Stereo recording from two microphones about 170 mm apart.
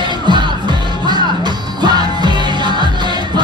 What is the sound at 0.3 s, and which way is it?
Music, 25° right (ahead or behind).